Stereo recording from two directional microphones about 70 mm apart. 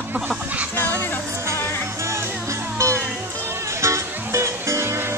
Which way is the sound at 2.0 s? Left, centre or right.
Right.